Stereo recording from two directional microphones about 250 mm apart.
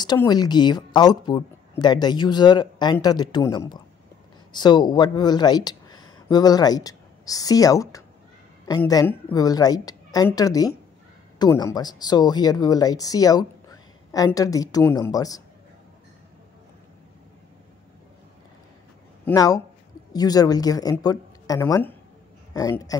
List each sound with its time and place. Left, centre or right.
0.0 s speech: centre
19.2 s a man's voice: centre